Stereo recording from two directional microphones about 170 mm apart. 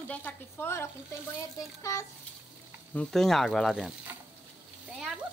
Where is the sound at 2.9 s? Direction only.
5° left (ahead or behind).